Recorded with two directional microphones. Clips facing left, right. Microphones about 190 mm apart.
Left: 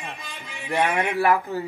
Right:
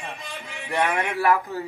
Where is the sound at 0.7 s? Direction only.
25° left (ahead or behind).